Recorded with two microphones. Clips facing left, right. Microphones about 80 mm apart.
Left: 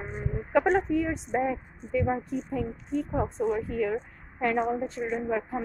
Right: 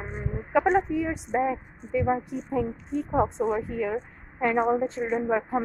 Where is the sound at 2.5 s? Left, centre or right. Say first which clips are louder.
Right 4 dB; right.